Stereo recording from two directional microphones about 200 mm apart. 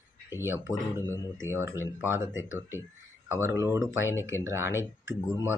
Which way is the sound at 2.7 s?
10° right (ahead or behind).